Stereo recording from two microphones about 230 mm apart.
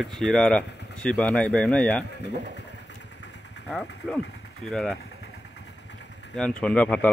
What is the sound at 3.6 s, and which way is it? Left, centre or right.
Speech, centre.